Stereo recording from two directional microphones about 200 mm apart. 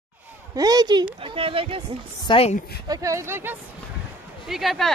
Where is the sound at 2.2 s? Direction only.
30° left (ahead or behind).